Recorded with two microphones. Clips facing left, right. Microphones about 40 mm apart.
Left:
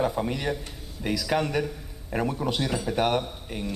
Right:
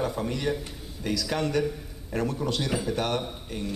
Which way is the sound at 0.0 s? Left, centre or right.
Centre.